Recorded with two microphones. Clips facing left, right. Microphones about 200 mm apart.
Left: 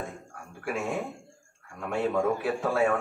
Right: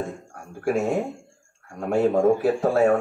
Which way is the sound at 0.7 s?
40° right (ahead or behind).